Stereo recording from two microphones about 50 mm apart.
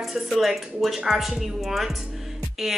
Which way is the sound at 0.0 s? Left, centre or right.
Centre.